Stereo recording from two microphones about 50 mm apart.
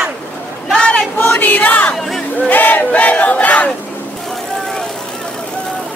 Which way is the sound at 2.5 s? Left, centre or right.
Left.